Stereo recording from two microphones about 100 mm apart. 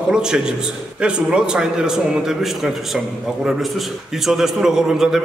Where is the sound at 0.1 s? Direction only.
5° right (ahead or behind).